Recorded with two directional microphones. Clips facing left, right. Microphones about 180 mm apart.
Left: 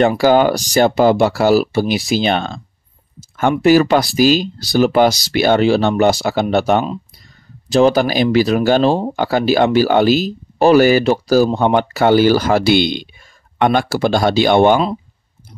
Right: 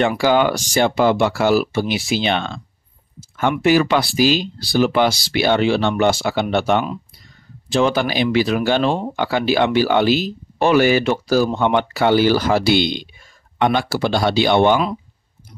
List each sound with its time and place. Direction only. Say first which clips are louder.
0.2 s speech: left 4 dB; 40° left (ahead or behind)
3.2 s a sound: left 3 dB; 45° left (ahead or behind)
3.6 s speech: left 4 dB; 40° left (ahead or behind)